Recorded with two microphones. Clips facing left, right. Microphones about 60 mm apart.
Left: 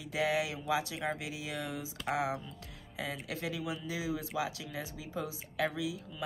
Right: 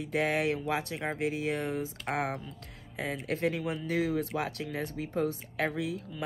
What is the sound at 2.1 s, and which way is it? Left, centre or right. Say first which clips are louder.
Speech: even; right.